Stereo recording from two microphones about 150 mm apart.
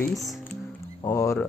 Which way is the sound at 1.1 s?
20° left (ahead or behind).